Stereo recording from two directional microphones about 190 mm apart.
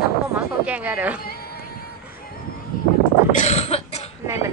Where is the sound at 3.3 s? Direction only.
35° left (ahead or behind).